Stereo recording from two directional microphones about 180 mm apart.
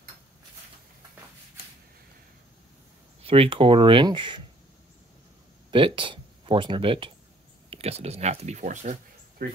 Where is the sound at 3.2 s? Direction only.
30° right (ahead or behind).